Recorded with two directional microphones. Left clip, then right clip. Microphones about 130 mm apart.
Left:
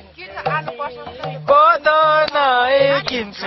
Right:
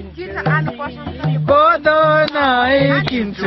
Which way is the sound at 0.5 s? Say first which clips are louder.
Right 2 dB; 50° left (ahead or behind).